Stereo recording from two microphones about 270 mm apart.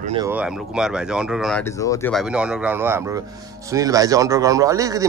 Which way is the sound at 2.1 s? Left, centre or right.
Centre.